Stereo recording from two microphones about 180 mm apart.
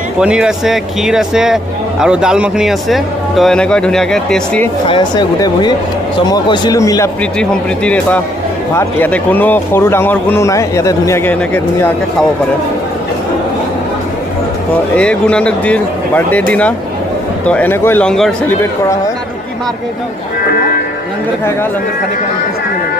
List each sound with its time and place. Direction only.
0.2 s speech: 5° right (ahead or behind)
4.8 s speech: 25° left (ahead or behind)
7.3 s a man's voice: 5° left (ahead or behind)
15.0 s a man's voice: 5° left (ahead or behind)